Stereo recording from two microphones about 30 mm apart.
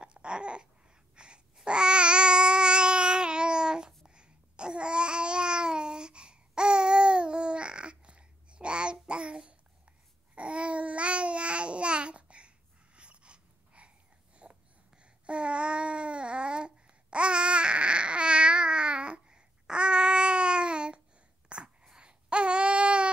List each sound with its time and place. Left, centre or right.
0.0 s babbling: right
21.5 s a sound: right
22.0 s baby cry: right